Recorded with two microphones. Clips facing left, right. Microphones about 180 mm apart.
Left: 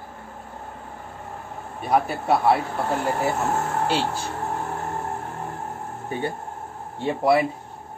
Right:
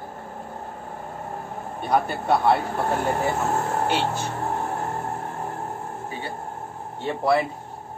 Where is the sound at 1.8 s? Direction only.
5° left (ahead or behind).